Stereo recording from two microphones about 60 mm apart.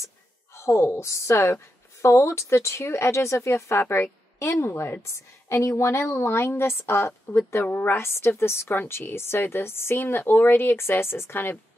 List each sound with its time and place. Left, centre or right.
0.0 s a woman's voice: left
7.6 s a woman's voice: left
7.9 s a woman's voice: left